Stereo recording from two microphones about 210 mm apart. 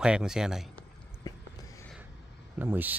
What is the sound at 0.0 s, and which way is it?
Speech, 5° right (ahead or behind).